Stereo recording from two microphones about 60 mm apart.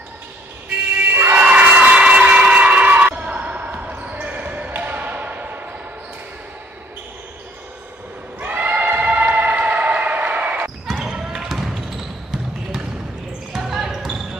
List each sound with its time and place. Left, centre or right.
0.7 s emergency vehicle: right
3.1 s basketball bounce: right
8.4 s a sound: right
10.9 s basketball bounce: centre
13.5 s basketball bounce: centre